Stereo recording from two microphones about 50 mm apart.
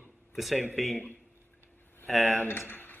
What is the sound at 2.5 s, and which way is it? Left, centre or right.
Speech, left.